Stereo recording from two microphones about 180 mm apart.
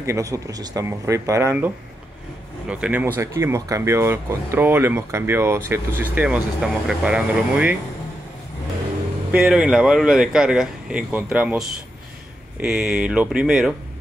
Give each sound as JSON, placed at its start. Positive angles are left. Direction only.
{"t": 0.0, "sound": "speech", "side_deg": -15}
{"t": 2.7, "sound": "speech", "side_deg": -10}
{"t": 9.3, "sound": "speech", "side_deg": -5}
{"t": 12.6, "sound": "speech", "side_deg": -5}